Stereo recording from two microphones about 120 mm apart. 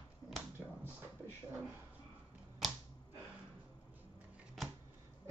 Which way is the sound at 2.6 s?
Centre (ahead or behind).